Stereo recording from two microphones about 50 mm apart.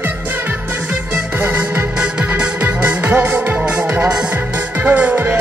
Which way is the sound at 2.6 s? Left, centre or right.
Right.